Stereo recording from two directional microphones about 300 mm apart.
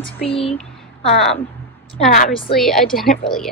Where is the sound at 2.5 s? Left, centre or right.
Centre.